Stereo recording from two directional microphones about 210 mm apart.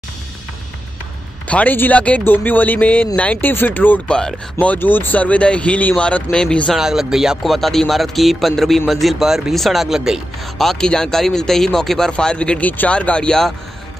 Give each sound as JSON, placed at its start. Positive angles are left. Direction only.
{"t": 1.5, "sound": "speech", "side_deg": 5}